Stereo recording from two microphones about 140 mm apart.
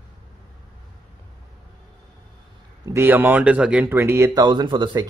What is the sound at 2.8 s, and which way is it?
Speech, 20° right (ahead or behind).